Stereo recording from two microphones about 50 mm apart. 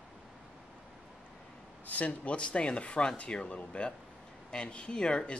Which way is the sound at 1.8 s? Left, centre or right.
Left.